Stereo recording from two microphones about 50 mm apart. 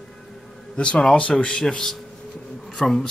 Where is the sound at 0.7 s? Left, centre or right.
Centre.